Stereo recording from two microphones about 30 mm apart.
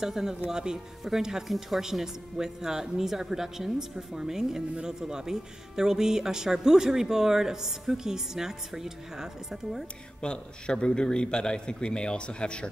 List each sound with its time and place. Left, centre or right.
0.0 s a man's voice: centre
10.2 s a man's voice: left